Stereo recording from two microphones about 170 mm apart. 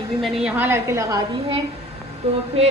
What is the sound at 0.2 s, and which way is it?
A woman's voice, centre (ahead or behind).